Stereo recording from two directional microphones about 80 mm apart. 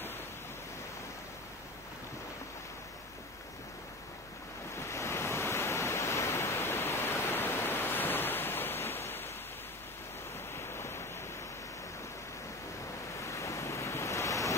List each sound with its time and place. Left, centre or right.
4.7 s waves: left
10.5 s a sound: left
13.2 s waves: left